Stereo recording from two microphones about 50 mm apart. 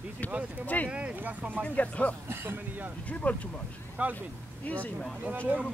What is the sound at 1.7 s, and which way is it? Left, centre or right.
Speech, left.